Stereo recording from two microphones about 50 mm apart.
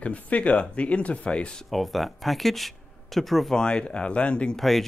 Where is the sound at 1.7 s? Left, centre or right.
Centre.